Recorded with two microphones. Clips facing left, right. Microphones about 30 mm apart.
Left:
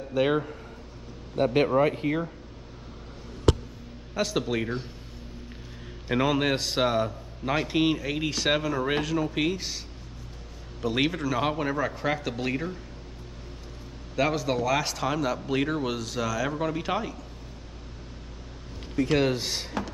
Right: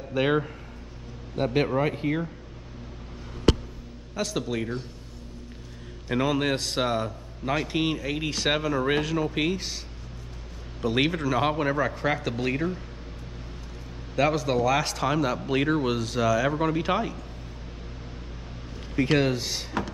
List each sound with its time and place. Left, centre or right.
0.1 s speech: centre
1.3 s a man's voice: centre
4.1 s a man's voice: centre
6.0 s a man's voice: centre
10.8 s a man's voice: centre
14.1 s speech: centre
19.0 s speech: right
19.7 s music: centre